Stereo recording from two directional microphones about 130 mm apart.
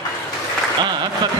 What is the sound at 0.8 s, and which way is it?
Speech, 35° right (ahead or behind).